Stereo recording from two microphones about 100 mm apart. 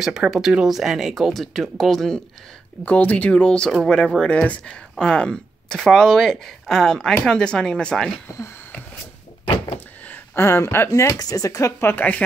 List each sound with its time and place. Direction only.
0.0 s speech: 5° right (ahead or behind)
2.8 s speech: 15° left (ahead or behind)
10.0 s speech: 25° left (ahead or behind)